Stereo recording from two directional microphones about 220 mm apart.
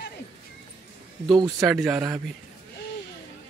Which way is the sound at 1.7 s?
5° right (ahead or behind).